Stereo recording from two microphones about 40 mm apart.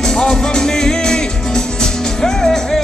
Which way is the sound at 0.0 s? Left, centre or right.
Centre.